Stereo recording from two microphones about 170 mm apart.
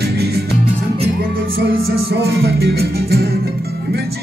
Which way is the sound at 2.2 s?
70° right (ahead or behind).